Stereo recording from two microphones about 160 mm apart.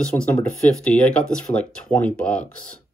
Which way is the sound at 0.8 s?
5° left (ahead or behind).